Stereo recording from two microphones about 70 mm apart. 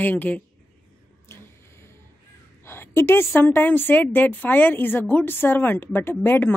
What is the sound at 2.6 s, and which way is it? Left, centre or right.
Speech, left.